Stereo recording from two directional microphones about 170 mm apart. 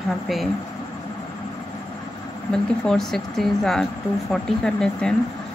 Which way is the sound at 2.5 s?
Centre (ahead or behind).